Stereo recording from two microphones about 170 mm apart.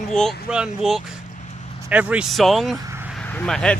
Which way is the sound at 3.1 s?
10° left (ahead or behind).